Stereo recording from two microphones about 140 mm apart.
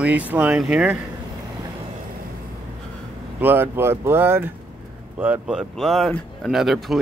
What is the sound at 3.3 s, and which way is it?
Speech, 15° right (ahead or behind).